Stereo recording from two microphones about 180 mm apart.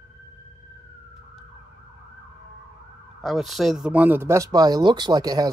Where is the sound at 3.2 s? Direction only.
Centre (ahead or behind); by 5.5 s 20° right (ahead or behind).